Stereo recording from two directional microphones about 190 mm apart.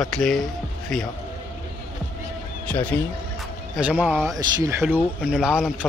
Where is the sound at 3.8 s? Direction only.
5° right (ahead or behind).